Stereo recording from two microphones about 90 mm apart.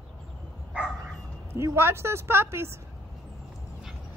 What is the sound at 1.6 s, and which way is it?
Speech, 30° right (ahead or behind).